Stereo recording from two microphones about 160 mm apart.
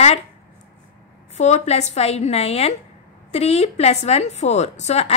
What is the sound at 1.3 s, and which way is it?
A woman's voice, 45° left (ahead or behind).